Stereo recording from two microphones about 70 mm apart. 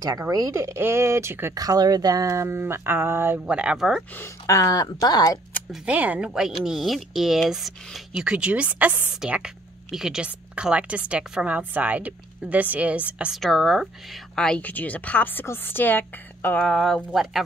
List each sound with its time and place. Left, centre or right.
0.3 s speech: right
1.5 s speech: right
2.4 s speech: right
3.3 s speech: centre
4.5 s speech: left
5.9 s a woman's voice: centre
6.6 s speech: centre
8.2 s speech: centre
9.2 s a woman's voice: centre
13.4 s speech: centre
14.3 s speech: centre
14.6 s a woman's voice: left
16.6 s speech: centre
17.1 s speech: centre